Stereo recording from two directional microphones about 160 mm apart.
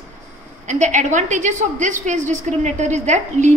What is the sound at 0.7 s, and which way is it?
A woman's voice, 50° right (ahead or behind).